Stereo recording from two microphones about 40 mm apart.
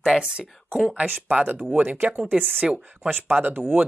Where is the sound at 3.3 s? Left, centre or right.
Right.